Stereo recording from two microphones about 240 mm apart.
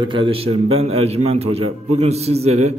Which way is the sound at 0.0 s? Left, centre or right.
Right.